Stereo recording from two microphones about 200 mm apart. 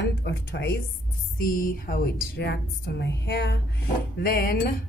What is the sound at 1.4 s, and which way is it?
A woman's voice, 45° left (ahead or behind).